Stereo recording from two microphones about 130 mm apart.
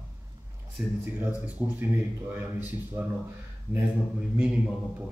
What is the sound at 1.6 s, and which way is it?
A man's voice, 15° right (ahead or behind).